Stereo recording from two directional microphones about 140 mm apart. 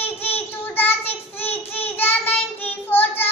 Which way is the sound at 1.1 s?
45° left (ahead or behind).